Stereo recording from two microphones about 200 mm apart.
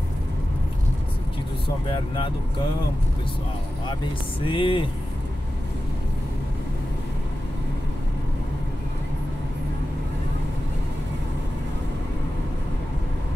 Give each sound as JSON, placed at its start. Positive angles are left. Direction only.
{"t": 4.5, "sound": "speech", "side_deg": 25}